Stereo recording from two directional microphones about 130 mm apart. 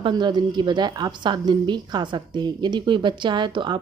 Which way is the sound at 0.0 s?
35° right (ahead or behind).